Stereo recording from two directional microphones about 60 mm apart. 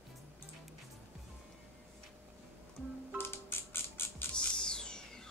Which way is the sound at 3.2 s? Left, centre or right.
Left.